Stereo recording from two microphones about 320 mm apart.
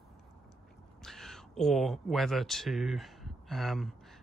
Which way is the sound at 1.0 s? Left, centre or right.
Centre.